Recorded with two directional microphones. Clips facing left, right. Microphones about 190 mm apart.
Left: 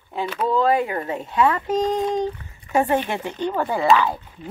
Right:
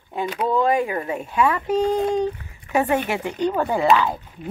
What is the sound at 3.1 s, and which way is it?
Speech, 15° right (ahead or behind).